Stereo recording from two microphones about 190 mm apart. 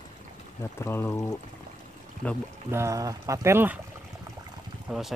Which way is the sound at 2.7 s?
15° right (ahead or behind).